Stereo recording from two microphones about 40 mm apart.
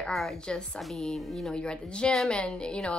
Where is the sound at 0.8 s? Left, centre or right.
Centre.